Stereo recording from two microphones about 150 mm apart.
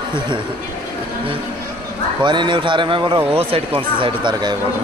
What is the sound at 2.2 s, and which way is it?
Speech, 30° right (ahead or behind).